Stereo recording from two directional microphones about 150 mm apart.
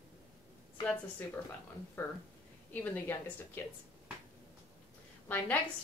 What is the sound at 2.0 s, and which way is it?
A woman's voice, 15° left (ahead or behind).